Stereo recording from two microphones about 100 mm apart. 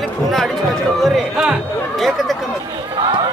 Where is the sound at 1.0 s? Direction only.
5° right (ahead or behind).